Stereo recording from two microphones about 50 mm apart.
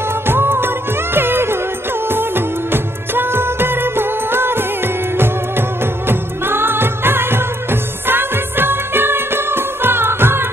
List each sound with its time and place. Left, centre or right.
0.3 s music: right
2.0 s music of bollywood: right